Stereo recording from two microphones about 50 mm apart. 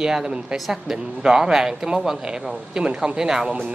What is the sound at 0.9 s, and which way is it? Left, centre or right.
A man's voice, centre.